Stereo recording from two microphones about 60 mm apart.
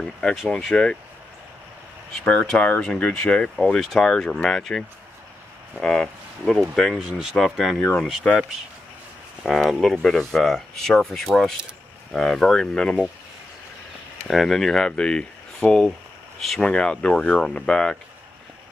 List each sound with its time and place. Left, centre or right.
0.0 s speech: centre
2.2 s speech: centre
7.0 s speech: centre
7.3 s speech: centre
8.2 s speech: centre
9.4 s speech: centre
14.2 s speech: centre
16.6 s speech: centre